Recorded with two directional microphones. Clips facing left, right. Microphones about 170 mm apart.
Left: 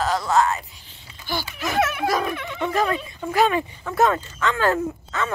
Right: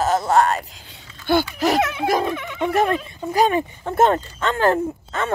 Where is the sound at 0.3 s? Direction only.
60° right (ahead or behind).